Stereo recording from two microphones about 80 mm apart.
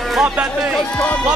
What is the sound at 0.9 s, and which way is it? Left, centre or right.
Music, centre.